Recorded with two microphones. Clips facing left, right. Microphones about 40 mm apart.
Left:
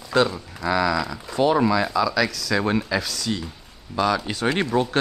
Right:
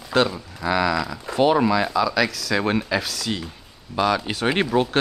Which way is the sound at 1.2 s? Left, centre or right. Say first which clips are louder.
Right 2 dB; centre.